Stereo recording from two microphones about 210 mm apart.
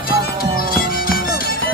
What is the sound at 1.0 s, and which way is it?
Music, 45° left (ahead or behind).